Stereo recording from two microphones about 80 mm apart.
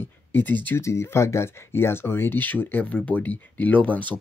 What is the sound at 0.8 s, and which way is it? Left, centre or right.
Speech, left.